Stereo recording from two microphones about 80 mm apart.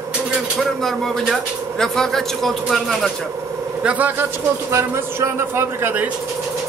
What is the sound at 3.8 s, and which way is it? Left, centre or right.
A man's voice, centre.